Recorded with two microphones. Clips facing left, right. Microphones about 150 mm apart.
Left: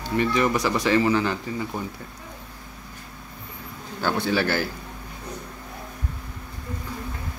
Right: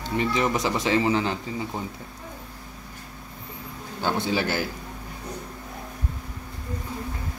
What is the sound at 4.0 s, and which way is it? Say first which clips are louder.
Speech: left 2 dB; 20° right (ahead or behind).